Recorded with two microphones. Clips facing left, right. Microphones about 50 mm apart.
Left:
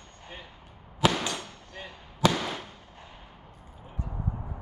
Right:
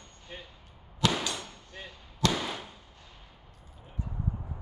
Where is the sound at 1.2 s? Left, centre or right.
Left.